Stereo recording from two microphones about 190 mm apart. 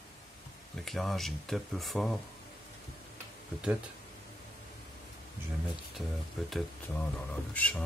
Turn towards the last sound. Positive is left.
turn(degrees=5)  # may be behind; listen again after turning